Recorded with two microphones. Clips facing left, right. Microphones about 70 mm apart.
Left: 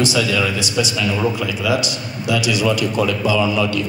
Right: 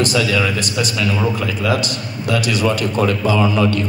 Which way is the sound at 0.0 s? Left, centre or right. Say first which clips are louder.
Right 1 dB; right.